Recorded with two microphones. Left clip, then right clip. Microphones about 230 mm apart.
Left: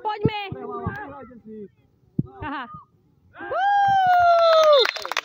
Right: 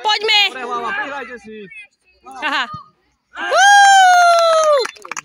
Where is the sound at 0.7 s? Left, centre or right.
Right.